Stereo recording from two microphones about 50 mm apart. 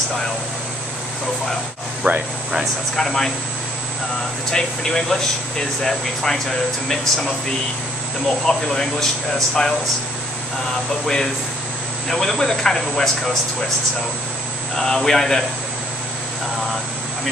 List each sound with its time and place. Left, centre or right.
2.0 s speech: right
3.0 s speech: centre
4.5 s speech: centre
12.1 s speech: centre
14.8 s speech: centre